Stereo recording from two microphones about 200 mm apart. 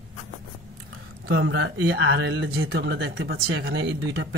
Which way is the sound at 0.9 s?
65° right (ahead or behind).